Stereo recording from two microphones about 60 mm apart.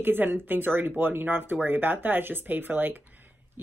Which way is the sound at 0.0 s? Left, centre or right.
Right.